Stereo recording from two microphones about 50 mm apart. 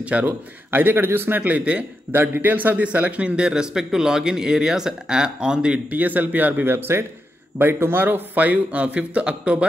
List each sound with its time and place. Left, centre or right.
0.0 s speech: right
0.3 s speech: right
1.4 s speech: right
2.3 s speech: right; by 5.8 s centre
5.9 s speech: right